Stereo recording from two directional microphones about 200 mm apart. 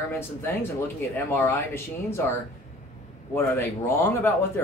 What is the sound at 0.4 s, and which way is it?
Speech, 10° left (ahead or behind).